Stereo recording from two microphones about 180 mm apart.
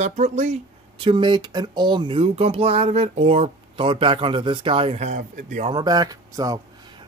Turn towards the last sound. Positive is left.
turn(degrees=-20)  # may be behind; listen again after turning